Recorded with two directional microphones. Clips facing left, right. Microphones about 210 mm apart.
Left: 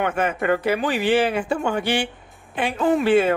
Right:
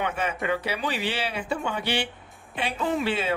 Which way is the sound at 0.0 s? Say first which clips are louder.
Left 6 dB; 50° left (ahead or behind).